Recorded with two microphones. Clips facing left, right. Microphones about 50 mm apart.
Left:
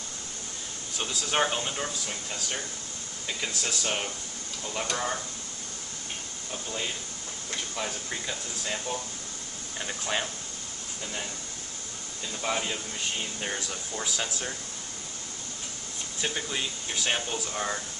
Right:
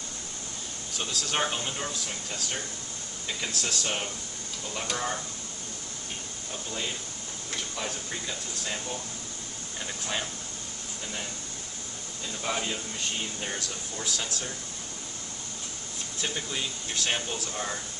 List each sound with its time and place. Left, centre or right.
0.9 s speech: centre
3.3 s speech: centre
7.7 s speech: centre
12.4 s speech: centre
13.9 s speech: centre
16.2 s speech: centre